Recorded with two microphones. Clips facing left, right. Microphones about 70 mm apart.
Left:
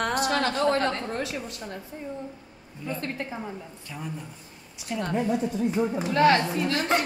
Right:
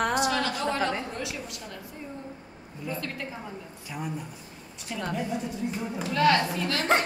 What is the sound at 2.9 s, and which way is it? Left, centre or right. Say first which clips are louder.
Speech: left 5 dB; left.